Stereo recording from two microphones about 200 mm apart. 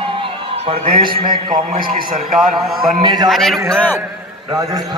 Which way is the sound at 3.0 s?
20° right (ahead or behind).